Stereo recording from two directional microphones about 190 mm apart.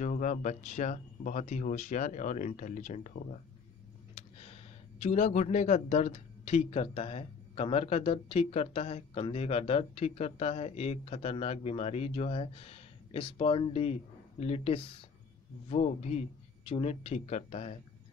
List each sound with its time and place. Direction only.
0.0 s a man's voice: 40° left (ahead or behind)
4.1 s a sound: 30° left (ahead or behind)
5.0 s a man's voice: 40° left (ahead or behind)